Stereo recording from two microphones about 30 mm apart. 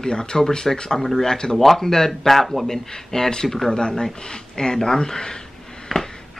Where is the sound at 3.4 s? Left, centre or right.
Centre.